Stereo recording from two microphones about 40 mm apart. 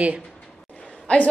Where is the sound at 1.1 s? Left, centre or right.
Left.